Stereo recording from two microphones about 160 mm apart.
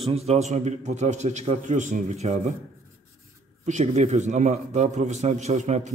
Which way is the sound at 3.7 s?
45° right (ahead or behind).